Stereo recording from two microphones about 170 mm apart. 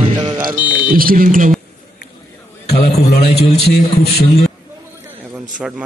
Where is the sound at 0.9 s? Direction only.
55° right (ahead or behind).